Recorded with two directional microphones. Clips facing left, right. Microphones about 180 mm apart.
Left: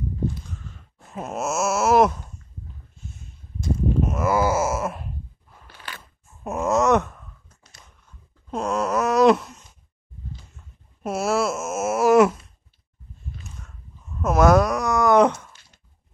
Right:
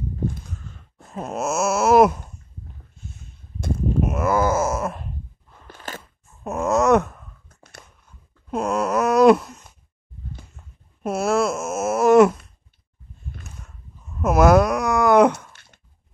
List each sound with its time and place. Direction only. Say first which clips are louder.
1.1 s wail: right 2 dB; centre (ahead or behind)
4.0 s wail: right 2 dB; centre (ahead or behind)
5.7 s crunch: right 5 dB; 45° right (ahead or behind)
6.4 s groan: right 1 dB; 5° left (ahead or behind)
7.4 s a sound: right 9 dB; 55° right (ahead or behind)
8.5 s wail: right 2 dB; centre (ahead or behind)
11.0 s wail: right 2 dB; centre (ahead or behind)
14.2 s a sound: right 2 dB; 5° right (ahead or behind)